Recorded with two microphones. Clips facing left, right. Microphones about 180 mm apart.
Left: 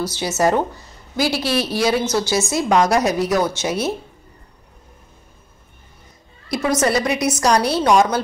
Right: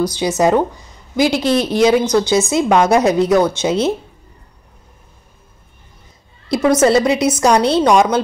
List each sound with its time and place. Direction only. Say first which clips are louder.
0.0 s a woman's voice: right 4 dB; 15° right (ahead or behind)
6.8 s a woman's voice: right 5 dB; 25° right (ahead or behind)